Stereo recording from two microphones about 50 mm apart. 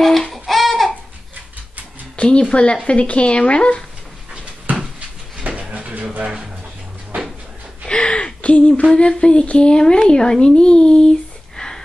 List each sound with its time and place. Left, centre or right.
0.0 s a sound: centre
2.1 s music: left
2.5 s speech: left
5.4 s a sound: right
7.8 s gasp: centre
8.9 s a woman's voice: centre